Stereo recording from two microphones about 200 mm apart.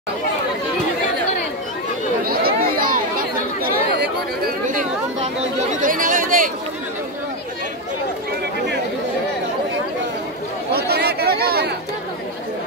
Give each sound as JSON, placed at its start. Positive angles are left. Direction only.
{"t": 2.2, "sound": "chatter", "side_deg": -45}
{"t": 4.6, "sound": "chatter", "side_deg": -40}
{"t": 10.7, "sound": "chatter", "side_deg": -50}